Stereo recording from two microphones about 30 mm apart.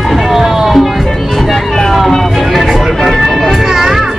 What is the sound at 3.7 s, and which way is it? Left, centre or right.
Music, centre.